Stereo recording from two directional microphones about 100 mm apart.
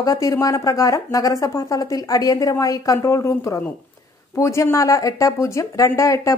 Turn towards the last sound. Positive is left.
turn(degrees=30)  # may be behind; listen again after turning